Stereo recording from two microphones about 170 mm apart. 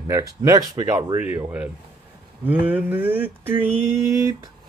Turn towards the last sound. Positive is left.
turn(degrees=-20)  # may be behind; listen again after turning